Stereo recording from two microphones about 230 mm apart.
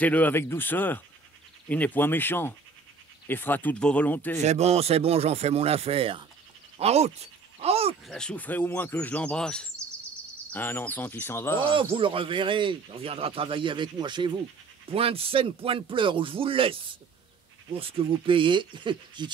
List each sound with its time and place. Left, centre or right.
0.0 s speech: centre
4.4 s speech: right
7.6 s a sound: right
8.1 s speech: centre
11.9 s speech: right
17.7 s speech: right